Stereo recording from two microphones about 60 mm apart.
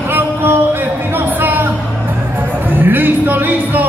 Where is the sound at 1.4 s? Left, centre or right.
Right.